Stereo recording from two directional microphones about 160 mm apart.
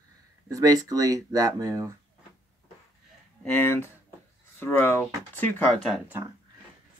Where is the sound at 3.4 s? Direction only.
10° left (ahead or behind).